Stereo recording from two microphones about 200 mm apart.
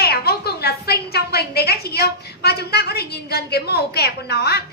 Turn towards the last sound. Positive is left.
turn(degrees=55)  # may be behind; listen again after turning